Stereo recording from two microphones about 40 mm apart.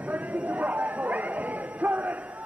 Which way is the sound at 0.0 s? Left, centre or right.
Right.